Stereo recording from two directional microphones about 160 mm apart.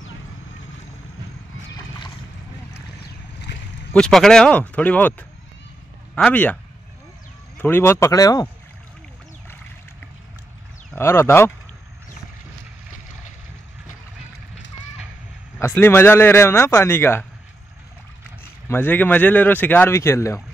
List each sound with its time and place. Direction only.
3.5 s a sound: 90° left
3.9 s speech: 5° left (ahead or behind)
6.1 s speech: 10° left (ahead or behind)
11.0 s speech: 15° left (ahead or behind)
15.6 s speech: 15° left (ahead or behind)
18.7 s speech: 10° left (ahead or behind)